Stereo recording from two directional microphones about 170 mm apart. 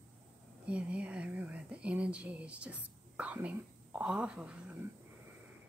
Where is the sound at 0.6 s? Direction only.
5° right (ahead or behind).